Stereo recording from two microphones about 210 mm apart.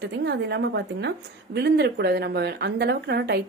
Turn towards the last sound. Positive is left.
turn(degrees=-50)  # may be behind; listen again after turning